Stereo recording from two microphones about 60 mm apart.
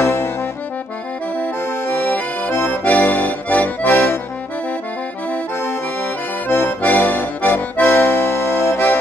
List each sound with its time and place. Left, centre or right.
0.0 s accordion: left
1.4 s accordion: left
6.8 s accordion: left